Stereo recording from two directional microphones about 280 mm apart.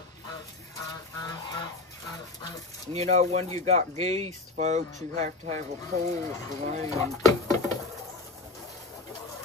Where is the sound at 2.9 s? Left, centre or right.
Right.